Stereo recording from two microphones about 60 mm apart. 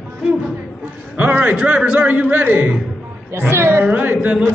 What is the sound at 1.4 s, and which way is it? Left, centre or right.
A man's voice, right.